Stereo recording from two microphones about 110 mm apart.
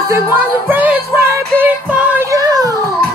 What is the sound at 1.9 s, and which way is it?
Child singing, 15° right (ahead or behind).